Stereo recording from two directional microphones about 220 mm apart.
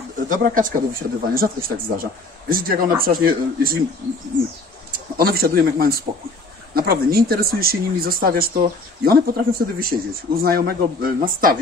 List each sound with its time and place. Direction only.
0.3 s speech: 35° right (ahead or behind)
4.9 s speech: 45° right (ahead or behind)